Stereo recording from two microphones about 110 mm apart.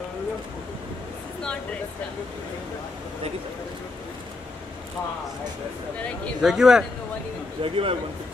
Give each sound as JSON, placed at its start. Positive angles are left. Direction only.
{"t": 6.4, "sound": "speech", "side_deg": -5}
{"t": 7.6, "sound": "a man's voice", "side_deg": -55}